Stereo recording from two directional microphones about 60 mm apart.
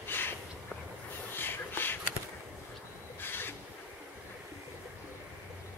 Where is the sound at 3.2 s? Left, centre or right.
Left.